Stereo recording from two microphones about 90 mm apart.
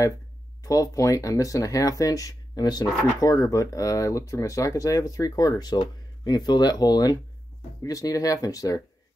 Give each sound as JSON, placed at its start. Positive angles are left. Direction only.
{"t": 0.6, "sound": "speech", "side_deg": 40}